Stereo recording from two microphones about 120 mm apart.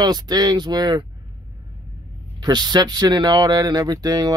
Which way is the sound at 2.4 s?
35° right (ahead or behind).